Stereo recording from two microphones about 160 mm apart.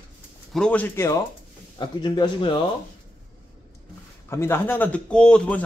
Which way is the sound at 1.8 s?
25° left (ahead or behind).